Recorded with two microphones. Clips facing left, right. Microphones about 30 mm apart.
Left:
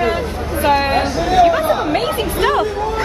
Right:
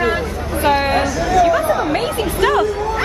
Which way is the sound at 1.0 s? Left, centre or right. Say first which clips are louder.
Left 2 dB; left.